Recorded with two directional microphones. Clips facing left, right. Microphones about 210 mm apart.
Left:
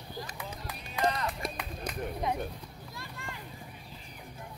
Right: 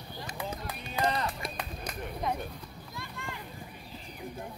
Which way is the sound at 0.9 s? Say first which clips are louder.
Even; 30° right (ahead or behind).